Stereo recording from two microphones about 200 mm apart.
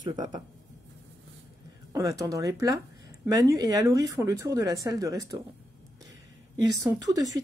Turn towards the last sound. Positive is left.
turn(degrees=-15)  # may be behind; listen again after turning